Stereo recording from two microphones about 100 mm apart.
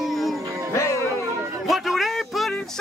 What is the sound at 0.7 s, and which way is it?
Music, 30° left (ahead or behind).